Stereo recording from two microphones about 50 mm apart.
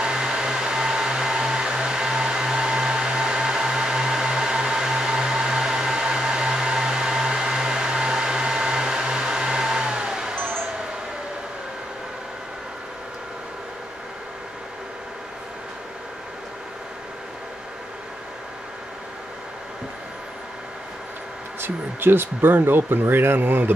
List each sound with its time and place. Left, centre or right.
0.0 s hair dryer: centre
10.3 s wind chime: right
21.5 s speech: right